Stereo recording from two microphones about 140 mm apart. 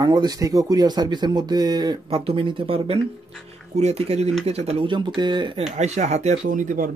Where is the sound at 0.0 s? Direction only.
30° right (ahead or behind).